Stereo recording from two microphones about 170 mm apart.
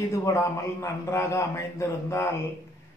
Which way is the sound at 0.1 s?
15° left (ahead or behind).